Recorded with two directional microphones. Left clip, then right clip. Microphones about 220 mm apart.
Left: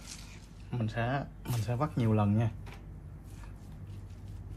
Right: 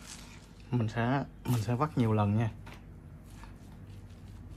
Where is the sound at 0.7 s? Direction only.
40° right (ahead or behind).